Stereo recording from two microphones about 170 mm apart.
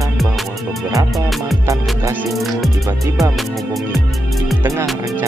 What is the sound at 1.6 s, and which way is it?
Music, 20° right (ahead or behind).